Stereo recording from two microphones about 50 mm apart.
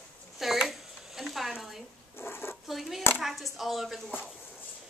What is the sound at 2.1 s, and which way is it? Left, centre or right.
Speech, left.